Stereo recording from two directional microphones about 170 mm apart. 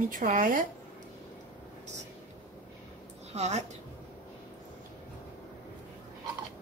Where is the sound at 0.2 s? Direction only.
50° right (ahead or behind).